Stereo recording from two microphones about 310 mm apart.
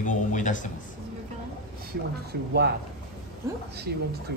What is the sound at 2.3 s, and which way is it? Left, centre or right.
Speech, right.